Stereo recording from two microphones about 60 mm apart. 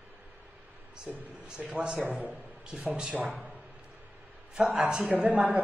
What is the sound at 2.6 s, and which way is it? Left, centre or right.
Speech, centre.